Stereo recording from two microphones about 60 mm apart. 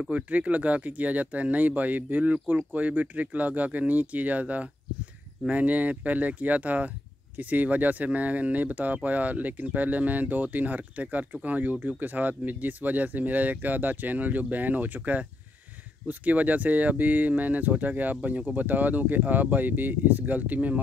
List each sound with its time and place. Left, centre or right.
0.0 s speech: right